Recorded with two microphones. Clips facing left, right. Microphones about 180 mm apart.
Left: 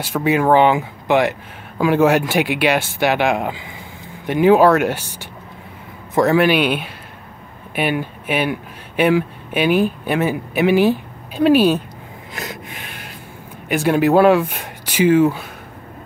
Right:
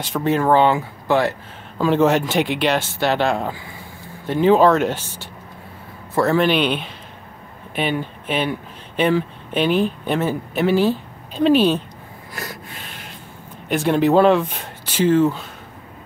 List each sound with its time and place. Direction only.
0.0 s speech: 10° left (ahead or behind)
12.4 s snort: 20° left (ahead or behind)
13.7 s speech: 10° left (ahead or behind)